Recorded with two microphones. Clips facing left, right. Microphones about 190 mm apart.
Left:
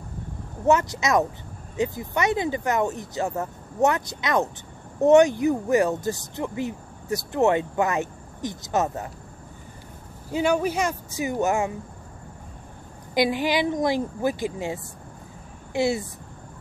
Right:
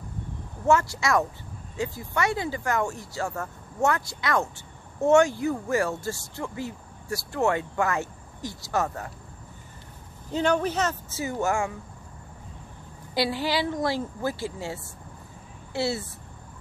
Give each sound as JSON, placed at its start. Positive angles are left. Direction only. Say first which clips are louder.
{"t": 0.7, "sound": "speech", "louder": "left 2 dB", "side_deg": 20}
{"t": 10.3, "sound": "speech", "louder": "left 2 dB", "side_deg": 10}
{"t": 13.1, "sound": "speech", "louder": "left 4 dB", "side_deg": 15}